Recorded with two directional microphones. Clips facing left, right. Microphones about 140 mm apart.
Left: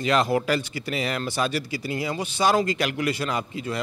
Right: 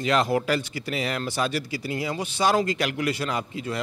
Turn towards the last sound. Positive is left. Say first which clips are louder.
# left 1 dB
turn(degrees=20)  # may be behind; listen again after turning